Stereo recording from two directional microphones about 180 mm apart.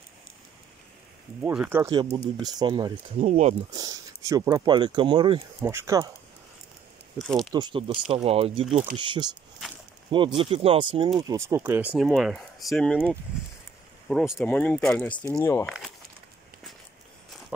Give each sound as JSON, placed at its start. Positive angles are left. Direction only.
{"t": 1.4, "sound": "speech", "side_deg": -10}
{"t": 3.2, "sound": "speech", "side_deg": -45}
{"t": 3.7, "sound": "speech", "side_deg": -20}
{"t": 5.6, "sound": "speech", "side_deg": -15}
{"t": 7.2, "sound": "speech", "side_deg": 0}
{"t": 7.5, "sound": "speech", "side_deg": -25}
{"t": 11.3, "sound": "speech", "side_deg": -15}